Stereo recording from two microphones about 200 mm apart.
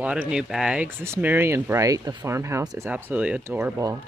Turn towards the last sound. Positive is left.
turn(degrees=-15)  # may be behind; listen again after turning